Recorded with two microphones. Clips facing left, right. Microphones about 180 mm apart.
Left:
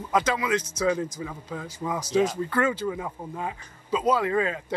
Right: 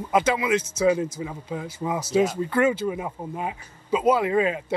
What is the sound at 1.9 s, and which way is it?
Speech, 10° right (ahead or behind).